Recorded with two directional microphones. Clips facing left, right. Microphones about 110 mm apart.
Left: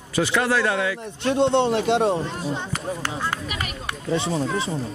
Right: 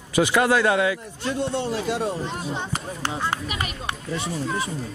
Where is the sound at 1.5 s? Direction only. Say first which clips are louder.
Left 7 dB; 70° left (ahead or behind).